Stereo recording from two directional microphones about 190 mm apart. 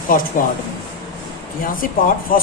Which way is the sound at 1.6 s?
45° left (ahead or behind).